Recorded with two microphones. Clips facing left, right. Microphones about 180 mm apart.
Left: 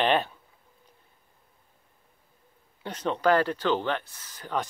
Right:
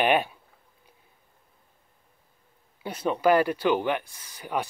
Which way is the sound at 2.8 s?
10° right (ahead or behind).